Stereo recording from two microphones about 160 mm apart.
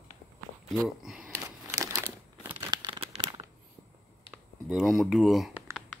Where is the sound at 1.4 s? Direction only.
20° right (ahead or behind).